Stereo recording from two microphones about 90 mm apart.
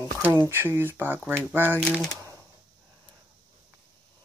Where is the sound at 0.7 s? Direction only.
25° right (ahead or behind).